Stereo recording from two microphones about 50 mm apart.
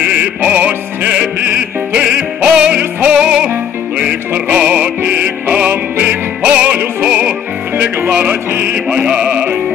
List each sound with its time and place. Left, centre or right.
0.0 s music: right
8.3 s music: right
8.7 s music: centre